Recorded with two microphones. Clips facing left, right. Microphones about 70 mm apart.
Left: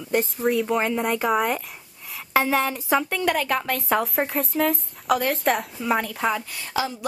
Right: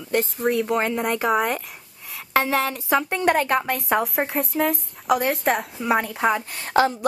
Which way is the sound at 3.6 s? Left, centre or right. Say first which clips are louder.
Right 1 dB; centre.